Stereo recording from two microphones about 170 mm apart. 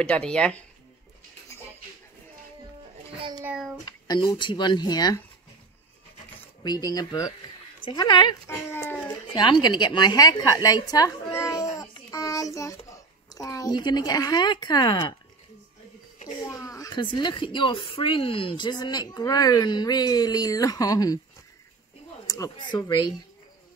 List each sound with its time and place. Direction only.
0.0 s speech: 5° left (ahead or behind)
3.2 s a child's voice: 25° right (ahead or behind)
3.4 s speech: 5° right (ahead or behind)
3.8 s a woman's voice: 25° left (ahead or behind)
6.6 s a woman's voice: 25° left (ahead or behind)
8.5 s speech: 15° left (ahead or behind)
9.3 s a woman's voice: 25° left (ahead or behind)
16.4 s a woman's voice: 20° left (ahead or behind)
22.2 s speech: 20° left (ahead or behind)